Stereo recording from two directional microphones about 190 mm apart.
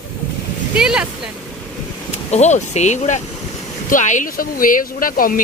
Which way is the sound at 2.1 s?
35° left (ahead or behind).